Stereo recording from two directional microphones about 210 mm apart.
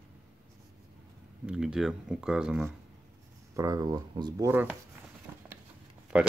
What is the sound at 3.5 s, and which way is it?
Speech, 15° right (ahead or behind).